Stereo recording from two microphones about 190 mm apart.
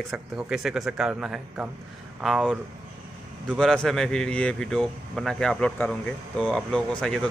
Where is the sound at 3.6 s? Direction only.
Centre (ahead or behind).